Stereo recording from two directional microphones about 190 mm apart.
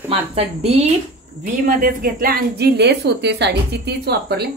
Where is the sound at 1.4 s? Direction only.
45° right (ahead or behind).